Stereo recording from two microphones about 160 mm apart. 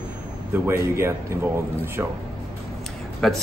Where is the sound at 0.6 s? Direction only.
15° right (ahead or behind).